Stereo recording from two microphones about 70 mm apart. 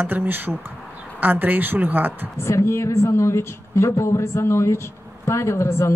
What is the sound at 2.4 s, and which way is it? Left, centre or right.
Speech, left.